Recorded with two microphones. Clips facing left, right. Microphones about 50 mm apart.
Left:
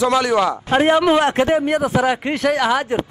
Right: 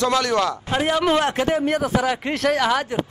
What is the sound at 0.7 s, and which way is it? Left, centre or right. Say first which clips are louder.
A man's voice: left 8 dB; left.